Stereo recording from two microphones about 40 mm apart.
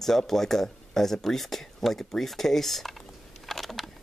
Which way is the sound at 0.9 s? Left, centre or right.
Centre.